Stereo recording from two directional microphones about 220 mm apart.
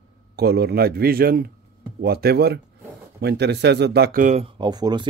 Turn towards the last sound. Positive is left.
turn(degrees=-20)  # may be behind; listen again after turning